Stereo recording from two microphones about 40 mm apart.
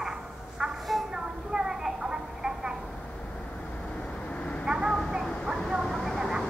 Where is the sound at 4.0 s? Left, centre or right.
Left.